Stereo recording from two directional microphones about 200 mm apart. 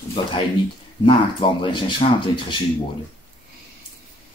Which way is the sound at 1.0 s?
25° left (ahead or behind).